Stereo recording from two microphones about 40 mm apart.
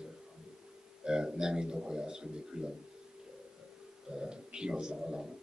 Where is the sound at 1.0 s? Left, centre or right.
Centre.